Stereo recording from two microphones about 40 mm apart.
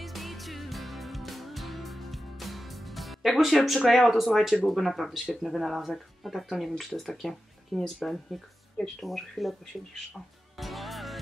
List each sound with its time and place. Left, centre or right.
0.0 s music: centre
3.6 s speech: centre
10.6 s music: centre